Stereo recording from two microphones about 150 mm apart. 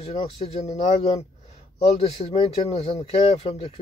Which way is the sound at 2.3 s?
45° left (ahead or behind).